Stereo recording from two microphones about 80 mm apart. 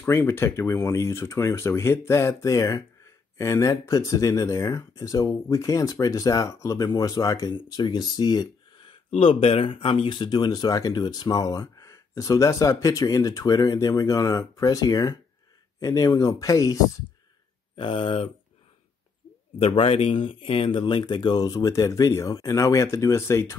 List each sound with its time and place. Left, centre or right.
0.0 s speech: left
7.5 s speech: left
9.7 s speech: left
17.7 s speech: left
20.2 s speech: left